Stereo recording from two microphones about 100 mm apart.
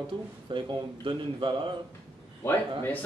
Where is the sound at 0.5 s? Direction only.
55° right (ahead or behind).